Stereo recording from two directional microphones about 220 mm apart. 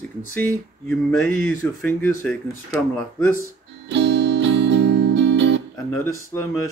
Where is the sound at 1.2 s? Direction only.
65° left (ahead or behind).